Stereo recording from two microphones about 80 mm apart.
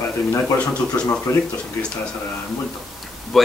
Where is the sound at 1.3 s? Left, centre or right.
Left.